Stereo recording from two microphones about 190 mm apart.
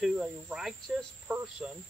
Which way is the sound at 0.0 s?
5° right (ahead or behind).